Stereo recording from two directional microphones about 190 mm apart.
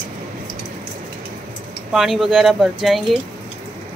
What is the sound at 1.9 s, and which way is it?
Speech, centre (ahead or behind).